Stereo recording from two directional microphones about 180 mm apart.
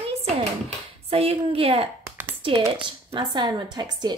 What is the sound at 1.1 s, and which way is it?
A woman's voice, 35° right (ahead or behind).